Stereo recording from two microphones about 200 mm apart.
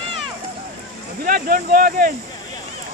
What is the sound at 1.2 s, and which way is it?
Speech, 45° right (ahead or behind).